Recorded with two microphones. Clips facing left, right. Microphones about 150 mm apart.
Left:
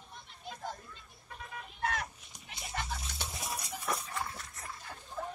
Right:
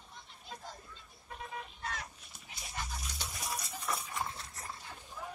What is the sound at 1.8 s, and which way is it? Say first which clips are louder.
Fowl: left 10 dB; 65° left (ahead or behind).